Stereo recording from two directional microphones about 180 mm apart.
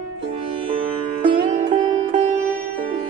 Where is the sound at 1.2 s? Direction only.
25° right (ahead or behind).